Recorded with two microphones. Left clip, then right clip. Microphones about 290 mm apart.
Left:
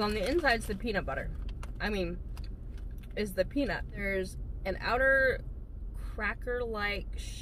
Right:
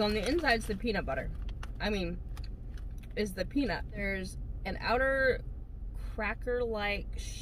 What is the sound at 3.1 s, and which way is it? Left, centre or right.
Speech, centre.